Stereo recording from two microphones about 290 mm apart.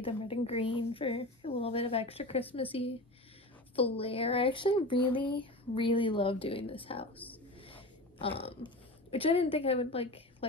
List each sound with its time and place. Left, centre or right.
0.0 s a woman's voice: centre